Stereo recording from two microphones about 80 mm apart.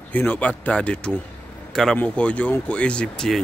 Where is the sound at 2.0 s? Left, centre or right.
Centre.